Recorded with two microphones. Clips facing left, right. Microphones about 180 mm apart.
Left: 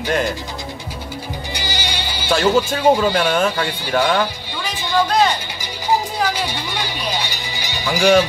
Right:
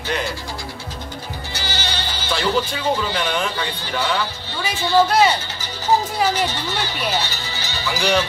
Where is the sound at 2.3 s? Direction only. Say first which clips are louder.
Left 5 dB; 45° left (ahead or behind).